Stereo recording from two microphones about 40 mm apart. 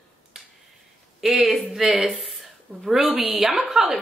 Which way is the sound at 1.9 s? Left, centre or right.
Centre.